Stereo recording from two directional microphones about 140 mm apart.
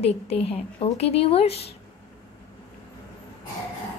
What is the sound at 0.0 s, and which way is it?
A woman's voice, 45° left (ahead or behind).